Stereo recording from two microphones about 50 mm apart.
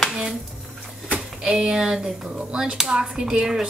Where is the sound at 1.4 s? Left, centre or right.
Centre.